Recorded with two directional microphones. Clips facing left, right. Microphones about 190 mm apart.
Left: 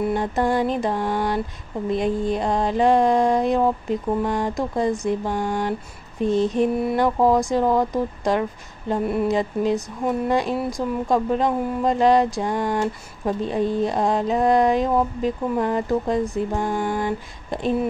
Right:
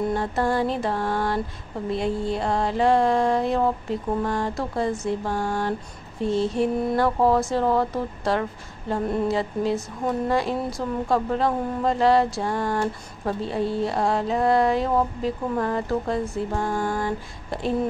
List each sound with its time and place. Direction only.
0.1 s speech: 15° left (ahead or behind)